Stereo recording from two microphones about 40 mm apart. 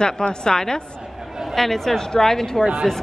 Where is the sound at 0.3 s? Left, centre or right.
Centre.